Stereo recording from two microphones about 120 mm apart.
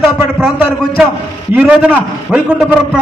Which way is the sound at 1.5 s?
15° right (ahead or behind).